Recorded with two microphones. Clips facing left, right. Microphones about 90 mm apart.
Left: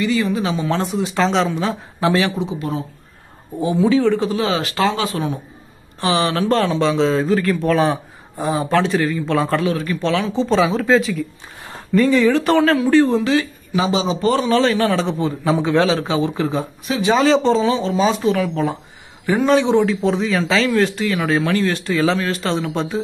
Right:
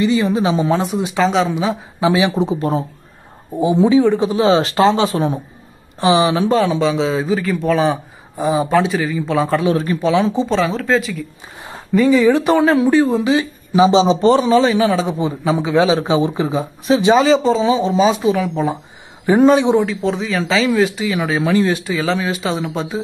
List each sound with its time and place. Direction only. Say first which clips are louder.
0.0 s a man's voice: right 3 dB; 20° right (ahead or behind)
1.2 s a man's voice: right 2 dB; 5° right (ahead or behind)
2.3 s speech: right 6 dB; 35° right (ahead or behind)
3.5 s a man's voice: right 3 dB; 20° right (ahead or behind)
6.5 s a man's voice: right 2 dB; 5° right (ahead or behind)
9.9 s speech: right 3 dB; 25° right (ahead or behind)
10.5 s a man's voice: left 6 dB; centre (ahead or behind)
12.3 s a man's voice: right 2 dB; 15° right (ahead or behind)
14.6 s a man's voice: right 2 dB; 10° right (ahead or behind)
15.9 s speech: right 3 dB; 20° right (ahead or behind)
17.2 s a man's voice: right 1 dB; 5° right (ahead or behind)
19.9 s a man's voice: left 1 dB; centre (ahead or behind)
21.4 s a man's voice: right 3 dB; 15° right (ahead or behind)
21.9 s a man's voice: left 1 dB; centre (ahead or behind)